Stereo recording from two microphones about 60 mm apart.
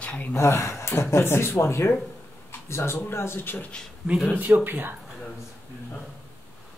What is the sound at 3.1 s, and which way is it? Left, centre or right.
Speech, left.